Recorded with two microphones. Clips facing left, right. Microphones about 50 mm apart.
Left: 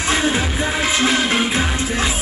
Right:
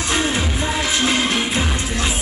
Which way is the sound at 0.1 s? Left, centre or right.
Left.